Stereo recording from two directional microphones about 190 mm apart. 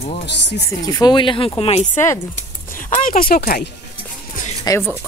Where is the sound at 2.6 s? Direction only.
45° left (ahead or behind).